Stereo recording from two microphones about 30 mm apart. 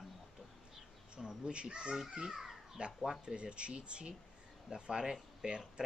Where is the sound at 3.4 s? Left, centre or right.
Right.